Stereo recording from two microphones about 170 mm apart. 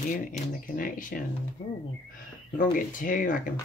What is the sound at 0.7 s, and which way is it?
Speech, 55° left (ahead or behind).